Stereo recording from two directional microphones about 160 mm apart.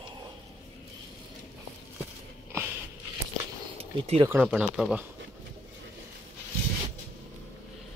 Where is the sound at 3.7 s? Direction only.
35° right (ahead or behind).